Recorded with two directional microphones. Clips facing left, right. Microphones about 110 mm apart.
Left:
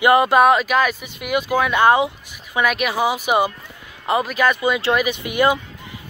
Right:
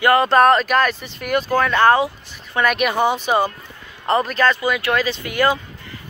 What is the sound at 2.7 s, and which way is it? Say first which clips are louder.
Speech: right 2 dB; centre (ahead or behind).